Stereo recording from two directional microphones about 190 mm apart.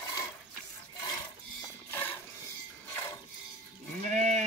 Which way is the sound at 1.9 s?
10° left (ahead or behind).